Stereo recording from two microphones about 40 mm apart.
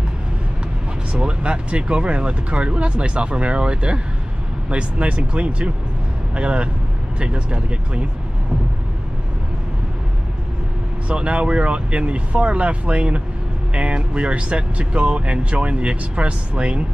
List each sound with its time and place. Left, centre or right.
1.1 s speech: right
11.1 s speech: right